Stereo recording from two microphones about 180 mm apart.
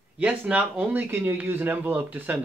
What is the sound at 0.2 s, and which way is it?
Speech, 10° right (ahead or behind).